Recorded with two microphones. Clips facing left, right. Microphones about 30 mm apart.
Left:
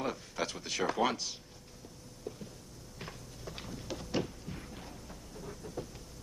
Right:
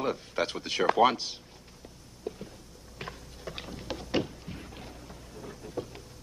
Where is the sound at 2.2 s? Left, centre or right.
Right.